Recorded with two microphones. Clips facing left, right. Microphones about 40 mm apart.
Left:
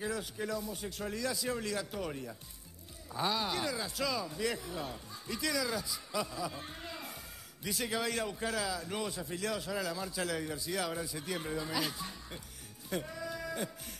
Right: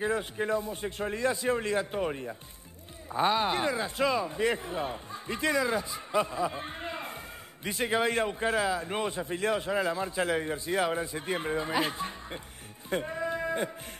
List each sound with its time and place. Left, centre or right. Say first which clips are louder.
0.0 s a man's voice: right 7 dB; right
12.9 s music: right 7 dB; right